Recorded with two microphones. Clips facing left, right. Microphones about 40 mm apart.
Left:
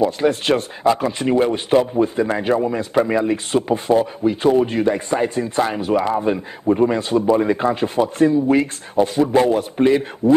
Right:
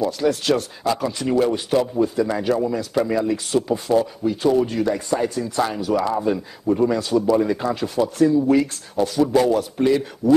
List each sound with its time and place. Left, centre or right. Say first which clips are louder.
0.0 s speech: left 3 dB; left